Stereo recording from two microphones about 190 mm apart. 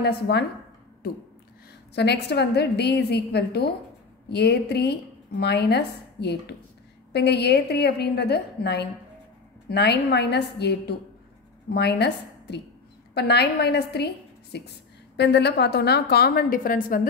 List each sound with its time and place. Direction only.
0.0 s a woman's voice: 60° left (ahead or behind)
2.0 s a woman's voice: 60° left (ahead or behind)